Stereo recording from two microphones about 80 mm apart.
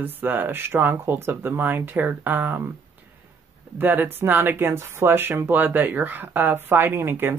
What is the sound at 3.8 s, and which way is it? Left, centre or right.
Speech, right.